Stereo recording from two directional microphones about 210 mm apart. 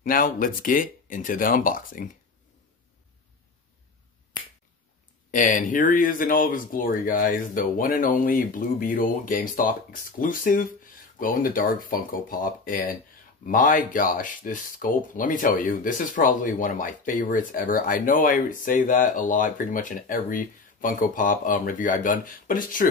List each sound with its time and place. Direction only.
0.0 s speech: 40° left (ahead or behind)
5.3 s speech: 40° left (ahead or behind)